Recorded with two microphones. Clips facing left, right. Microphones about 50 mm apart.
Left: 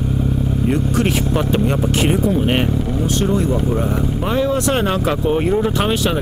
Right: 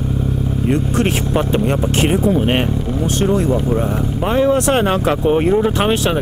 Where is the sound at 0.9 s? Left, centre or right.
Right.